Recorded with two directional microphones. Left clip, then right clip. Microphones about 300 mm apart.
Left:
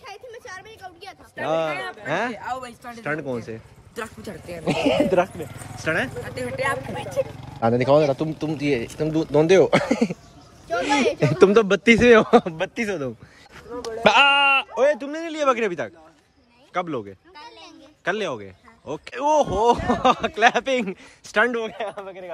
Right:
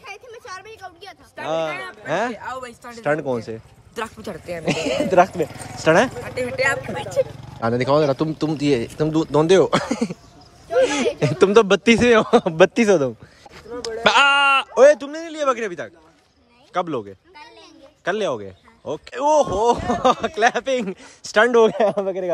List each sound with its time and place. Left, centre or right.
0.0 s a sound: centre
1.4 s speech: centre
4.6 s speech: centre; by 7.2 s right
7.6 s speech: centre
11.1 s speech: centre
12.5 s a man's voice: centre